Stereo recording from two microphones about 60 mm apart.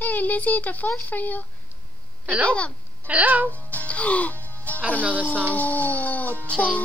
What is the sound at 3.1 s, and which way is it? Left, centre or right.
Speech, right.